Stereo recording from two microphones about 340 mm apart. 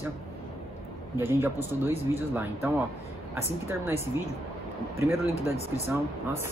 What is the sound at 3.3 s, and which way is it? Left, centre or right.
Speech, centre.